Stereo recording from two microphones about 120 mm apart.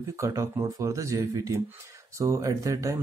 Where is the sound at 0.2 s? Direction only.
25° right (ahead or behind).